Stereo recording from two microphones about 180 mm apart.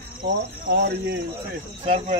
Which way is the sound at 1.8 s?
35° right (ahead or behind).